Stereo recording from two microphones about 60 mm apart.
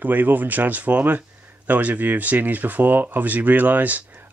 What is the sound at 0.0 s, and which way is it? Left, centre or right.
Speech, right.